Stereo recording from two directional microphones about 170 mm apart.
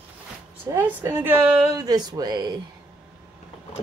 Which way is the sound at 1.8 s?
25° right (ahead or behind).